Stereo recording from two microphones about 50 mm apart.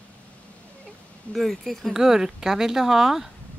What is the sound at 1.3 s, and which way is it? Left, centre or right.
Speech, centre.